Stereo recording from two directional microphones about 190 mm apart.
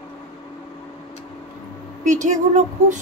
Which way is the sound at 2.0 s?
40° right (ahead or behind).